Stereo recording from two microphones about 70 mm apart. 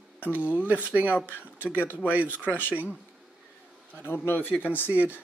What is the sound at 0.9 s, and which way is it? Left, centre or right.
Speech, right.